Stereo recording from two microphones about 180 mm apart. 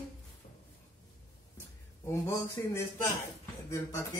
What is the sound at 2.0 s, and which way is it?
Speech, 15° left (ahead or behind).